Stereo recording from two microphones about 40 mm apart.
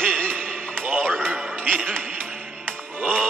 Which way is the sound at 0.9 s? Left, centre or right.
Right.